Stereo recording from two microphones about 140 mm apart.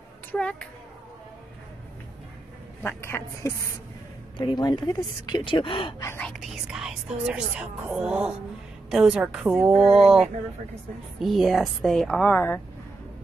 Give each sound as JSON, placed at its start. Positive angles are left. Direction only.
{"t": 0.3, "sound": "a woman's voice", "side_deg": 5}
{"t": 2.8, "sound": "a woman's voice", "side_deg": 15}
{"t": 4.4, "sound": "speech", "side_deg": 30}
{"t": 6.0, "sound": "a woman's voice", "side_deg": 15}
{"t": 6.4, "sound": "speech", "side_deg": 0}